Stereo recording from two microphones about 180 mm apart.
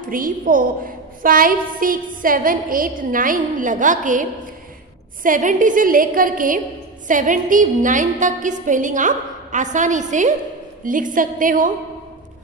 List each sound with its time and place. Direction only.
0.0 s a woman's voice: 50° right (ahead or behind)